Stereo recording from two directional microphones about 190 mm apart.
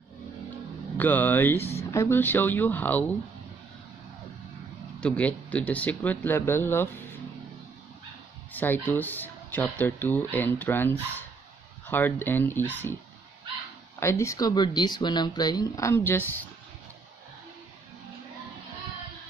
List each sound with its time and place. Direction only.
0.9 s speech: 10° left (ahead or behind)
5.0 s speech: 5° left (ahead or behind)
8.5 s speech: 10° left (ahead or behind)
13.9 s speech: 15° left (ahead or behind)